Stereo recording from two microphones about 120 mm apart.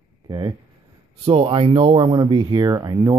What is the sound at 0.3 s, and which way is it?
Speech, 35° right (ahead or behind).